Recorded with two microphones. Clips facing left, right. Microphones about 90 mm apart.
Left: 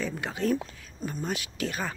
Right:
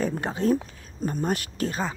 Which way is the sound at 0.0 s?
40° right (ahead or behind).